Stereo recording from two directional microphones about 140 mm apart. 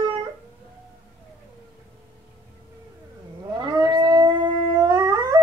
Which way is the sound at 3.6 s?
30° right (ahead or behind).